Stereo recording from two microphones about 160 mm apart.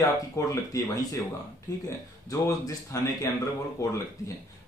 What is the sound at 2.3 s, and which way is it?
Speech, 20° left (ahead or behind).